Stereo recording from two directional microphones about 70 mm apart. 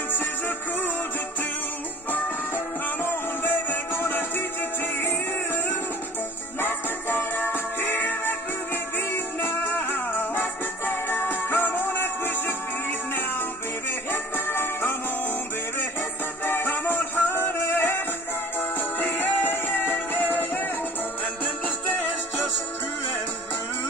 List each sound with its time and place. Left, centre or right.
2.0 s music: left
6.6 s music: left
8.9 s music: left
13.1 s music: left
16.4 s music: left
19.1 s music: left